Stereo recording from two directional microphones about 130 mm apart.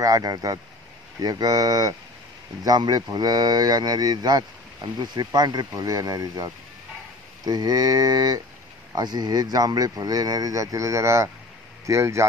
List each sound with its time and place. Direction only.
0.0 s speech: 30° right (ahead or behind)